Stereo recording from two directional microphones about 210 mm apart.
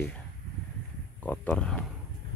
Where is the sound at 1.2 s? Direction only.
5° left (ahead or behind).